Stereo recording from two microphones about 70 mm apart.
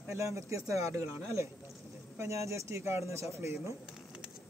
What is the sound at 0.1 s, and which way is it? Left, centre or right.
Speech, right.